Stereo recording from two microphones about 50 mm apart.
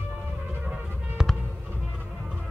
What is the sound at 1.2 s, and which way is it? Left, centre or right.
Music, centre.